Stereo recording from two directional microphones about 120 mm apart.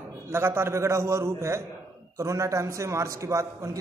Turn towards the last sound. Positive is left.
turn(degrees=-25)  # may be behind; listen again after turning